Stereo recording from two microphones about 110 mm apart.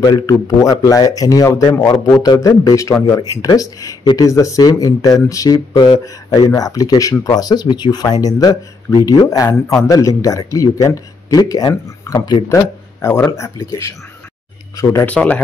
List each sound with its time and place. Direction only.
0.1 s speech: 35° left (ahead or behind)
12.5 s speech: 25° left (ahead or behind)
15.0 s speech: 10° left (ahead or behind)